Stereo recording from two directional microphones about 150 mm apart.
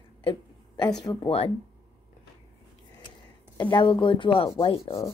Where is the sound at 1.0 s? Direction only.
40° left (ahead or behind).